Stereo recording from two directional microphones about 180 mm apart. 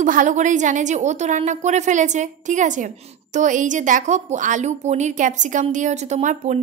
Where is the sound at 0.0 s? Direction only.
45° right (ahead or behind).